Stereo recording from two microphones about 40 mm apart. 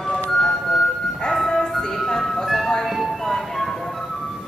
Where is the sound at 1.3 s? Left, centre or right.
Centre.